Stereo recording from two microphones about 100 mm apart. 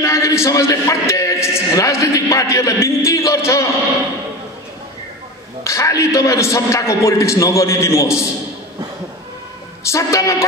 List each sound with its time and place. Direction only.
0.0 s a man's voice: 30° left (ahead or behind)
5.6 s a man's voice: 30° left (ahead or behind)
9.8 s a man's voice: 30° left (ahead or behind)